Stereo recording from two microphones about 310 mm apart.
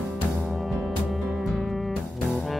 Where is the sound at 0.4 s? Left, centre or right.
Centre.